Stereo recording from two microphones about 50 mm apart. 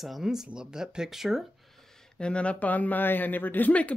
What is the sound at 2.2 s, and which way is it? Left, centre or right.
A man's voice, left.